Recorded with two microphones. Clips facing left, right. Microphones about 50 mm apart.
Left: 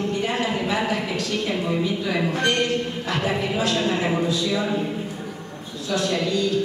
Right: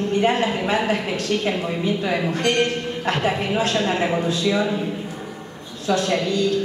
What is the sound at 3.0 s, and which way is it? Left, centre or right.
A woman's voice, right.